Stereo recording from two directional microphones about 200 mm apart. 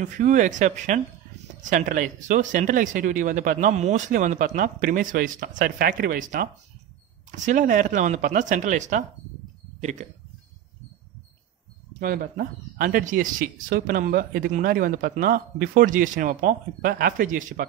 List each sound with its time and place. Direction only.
0.0 s speech: 40° right (ahead or behind)
12.0 s speech: 45° right (ahead or behind)